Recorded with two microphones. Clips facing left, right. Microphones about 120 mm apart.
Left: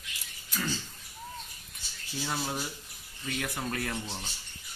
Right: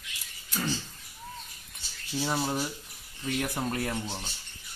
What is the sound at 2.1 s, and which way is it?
Speech, 35° right (ahead or behind).